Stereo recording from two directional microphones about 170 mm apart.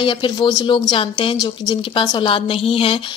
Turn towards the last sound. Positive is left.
turn(degrees=35)  # may be behind; listen again after turning